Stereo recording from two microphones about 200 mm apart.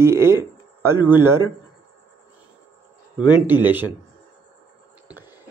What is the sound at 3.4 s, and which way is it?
Speech, 10° right (ahead or behind).